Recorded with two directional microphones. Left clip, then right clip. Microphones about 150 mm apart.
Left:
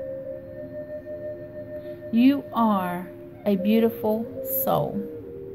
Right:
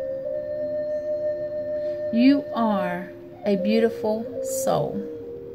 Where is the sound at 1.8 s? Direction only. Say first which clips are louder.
Right 1 dB; 25° right (ahead or behind).